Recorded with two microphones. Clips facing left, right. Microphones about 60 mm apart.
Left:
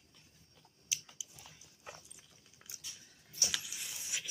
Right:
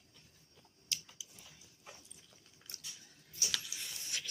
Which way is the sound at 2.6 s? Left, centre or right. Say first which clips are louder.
Even; centre.